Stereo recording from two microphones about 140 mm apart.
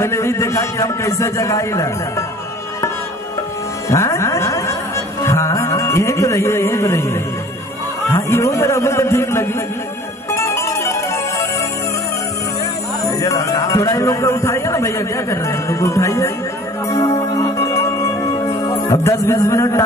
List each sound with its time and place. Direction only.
0.0 s speech: 20° left (ahead or behind)
3.9 s music: 20° left (ahead or behind)
8.1 s speech: 20° left (ahead or behind)
10.3 s music: 20° left (ahead or behind)
13.0 s speech: 20° left (ahead or behind)
16.9 s music: 25° left (ahead or behind)
18.9 s speech: 20° left (ahead or behind)